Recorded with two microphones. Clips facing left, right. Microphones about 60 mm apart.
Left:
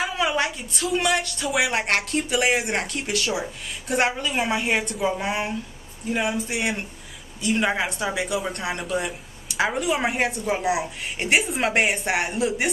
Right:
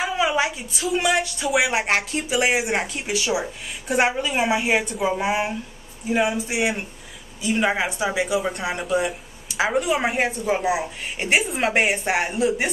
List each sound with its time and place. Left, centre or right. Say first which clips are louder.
0.0 s a woman's voice: right 2 dB; centre